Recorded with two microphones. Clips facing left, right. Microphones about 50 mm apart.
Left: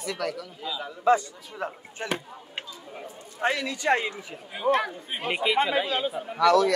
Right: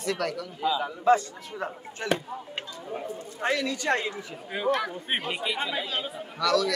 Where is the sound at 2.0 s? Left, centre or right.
Left.